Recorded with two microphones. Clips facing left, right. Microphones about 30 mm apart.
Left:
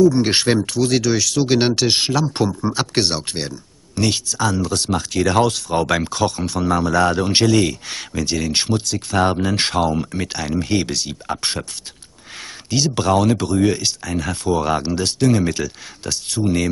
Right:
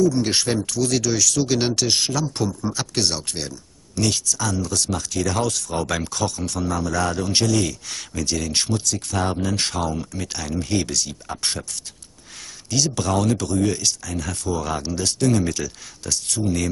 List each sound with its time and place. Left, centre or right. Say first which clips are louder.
0.0 s speech: left 5 dB; left
12.6 s speech: left 4 dB; left